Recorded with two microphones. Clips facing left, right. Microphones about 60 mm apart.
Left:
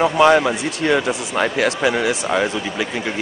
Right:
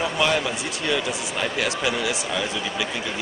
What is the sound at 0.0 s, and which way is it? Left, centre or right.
Speech, left.